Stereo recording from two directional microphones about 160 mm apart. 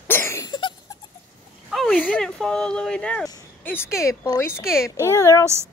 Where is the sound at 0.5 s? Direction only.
30° left (ahead or behind).